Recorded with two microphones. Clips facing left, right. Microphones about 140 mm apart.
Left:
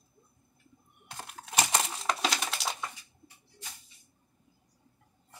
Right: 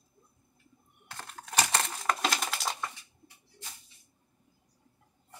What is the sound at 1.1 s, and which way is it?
Typing, 15° left (ahead or behind).